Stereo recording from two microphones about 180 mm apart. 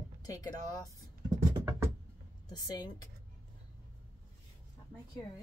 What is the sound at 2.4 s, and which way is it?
Speech, 20° left (ahead or behind).